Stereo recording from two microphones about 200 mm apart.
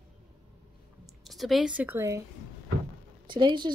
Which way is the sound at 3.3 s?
25° right (ahead or behind).